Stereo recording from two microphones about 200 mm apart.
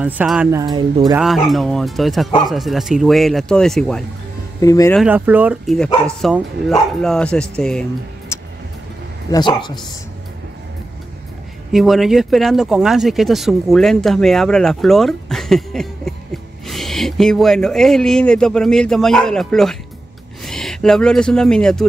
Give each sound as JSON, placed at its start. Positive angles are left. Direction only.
{"t": 0.0, "sound": "speech", "side_deg": -5}
{"t": 0.6, "sound": "speech", "side_deg": -20}
{"t": 1.1, "sound": "speech", "side_deg": 0}
{"t": 4.6, "sound": "speech", "side_deg": 15}
{"t": 4.9, "sound": "speech", "side_deg": -5}
{"t": 8.3, "sound": "vehicle", "side_deg": 15}
{"t": 9.3, "sound": "speech", "side_deg": 20}
{"t": 11.7, "sound": "speech", "side_deg": 0}